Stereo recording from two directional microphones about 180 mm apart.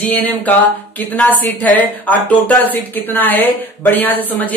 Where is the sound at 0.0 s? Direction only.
10° left (ahead or behind).